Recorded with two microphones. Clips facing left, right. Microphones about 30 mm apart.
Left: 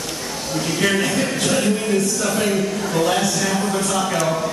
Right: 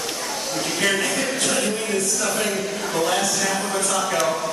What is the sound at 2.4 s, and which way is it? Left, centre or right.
Speech, centre.